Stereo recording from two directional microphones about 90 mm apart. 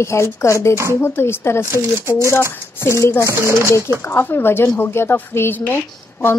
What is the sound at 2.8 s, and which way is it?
A woman's voice, 30° left (ahead or behind).